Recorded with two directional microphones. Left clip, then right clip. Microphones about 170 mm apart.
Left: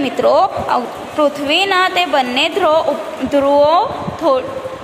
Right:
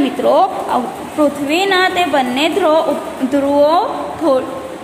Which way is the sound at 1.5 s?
20° left (ahead or behind).